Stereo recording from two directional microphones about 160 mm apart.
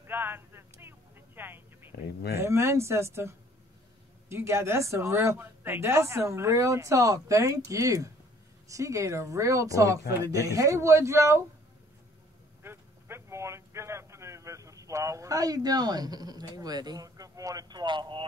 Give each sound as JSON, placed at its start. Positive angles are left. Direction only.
{"t": 0.0, "sound": "a sound", "side_deg": -15}
{"t": 2.3, "sound": "a woman's voice", "side_deg": -15}
{"t": 12.6, "sound": "a man's voice", "side_deg": -15}